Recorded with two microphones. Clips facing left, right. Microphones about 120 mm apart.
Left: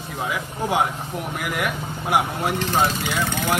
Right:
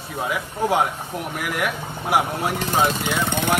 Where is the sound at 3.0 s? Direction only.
60° right (ahead or behind).